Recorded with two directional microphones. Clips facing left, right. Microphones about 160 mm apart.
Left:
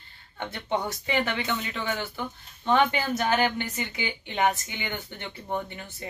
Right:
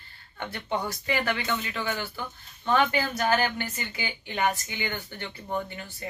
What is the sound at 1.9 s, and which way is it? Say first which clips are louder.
A woman's voice: left 2 dB; 20° left (ahead or behind).